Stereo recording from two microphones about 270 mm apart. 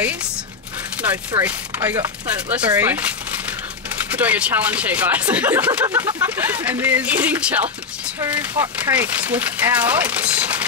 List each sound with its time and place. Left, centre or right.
1.0 s chopping: centre
2.5 s speech: centre